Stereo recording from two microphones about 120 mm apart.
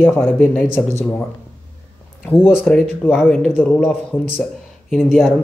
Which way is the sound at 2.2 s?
20° left (ahead or behind).